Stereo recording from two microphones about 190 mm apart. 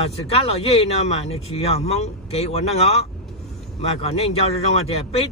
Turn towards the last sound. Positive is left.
turn(degrees=35)  # may be behind; listen again after turning